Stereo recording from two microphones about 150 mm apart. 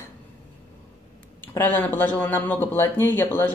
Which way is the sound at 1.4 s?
15° left (ahead or behind).